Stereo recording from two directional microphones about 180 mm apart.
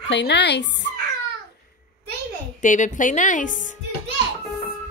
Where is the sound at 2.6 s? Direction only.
45° left (ahead or behind).